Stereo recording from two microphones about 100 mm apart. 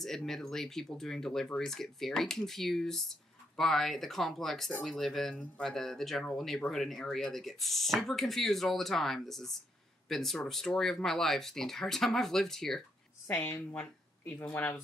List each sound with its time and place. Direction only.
0.0 s speech: 5° left (ahead or behind)
13.3 s speech: 20° left (ahead or behind)